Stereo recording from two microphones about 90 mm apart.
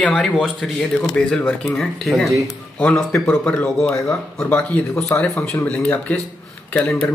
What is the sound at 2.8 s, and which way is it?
Speech, 15° left (ahead or behind).